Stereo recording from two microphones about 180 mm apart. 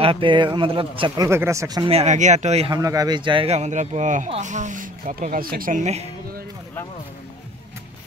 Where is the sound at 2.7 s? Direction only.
20° right (ahead or behind); by 6.1 s 40° right (ahead or behind).